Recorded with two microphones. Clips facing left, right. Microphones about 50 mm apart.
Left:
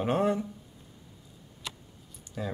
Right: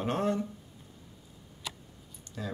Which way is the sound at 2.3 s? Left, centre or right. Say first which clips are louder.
Left 4 dB; centre.